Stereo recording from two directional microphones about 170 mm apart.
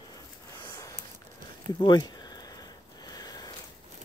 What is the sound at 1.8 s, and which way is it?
Speech, 25° left (ahead or behind).